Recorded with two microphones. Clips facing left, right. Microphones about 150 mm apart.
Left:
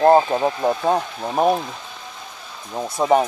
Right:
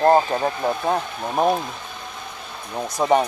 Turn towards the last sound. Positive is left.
turn(degrees=5)  # may be behind; listen again after turning